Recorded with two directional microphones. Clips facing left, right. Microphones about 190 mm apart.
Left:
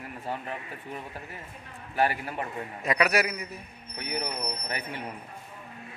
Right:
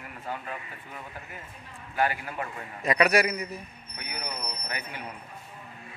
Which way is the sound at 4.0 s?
30° left (ahead or behind).